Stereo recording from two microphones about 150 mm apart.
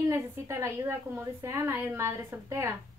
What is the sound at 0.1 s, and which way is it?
A woman's voice, 15° right (ahead or behind).